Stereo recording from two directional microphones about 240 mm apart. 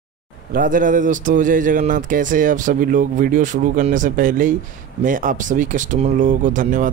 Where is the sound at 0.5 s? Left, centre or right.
Right.